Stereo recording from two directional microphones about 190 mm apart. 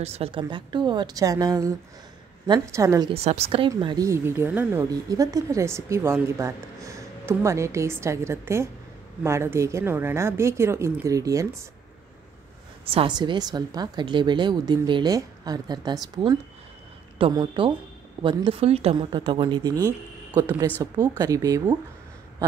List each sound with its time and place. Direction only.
0.0 s speech: 30° right (ahead or behind)
3.1 s speech: 35° right (ahead or behind); by 11.4 s 15° right (ahead or behind)
12.8 s speech: 25° right (ahead or behind)